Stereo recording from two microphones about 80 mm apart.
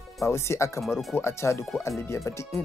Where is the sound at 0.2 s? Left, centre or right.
Left.